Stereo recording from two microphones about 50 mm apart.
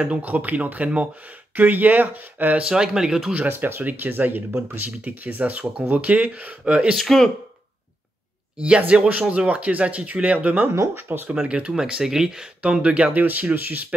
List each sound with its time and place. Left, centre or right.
0.2 s speech: right
2.6 s speech: centre
3.4 s speech: right
7.0 s speech: centre
8.5 s speech: right
11.0 s speech: right
11.4 s speech: right
11.9 s speech: centre
12.7 s speech: right
13.1 s speech: right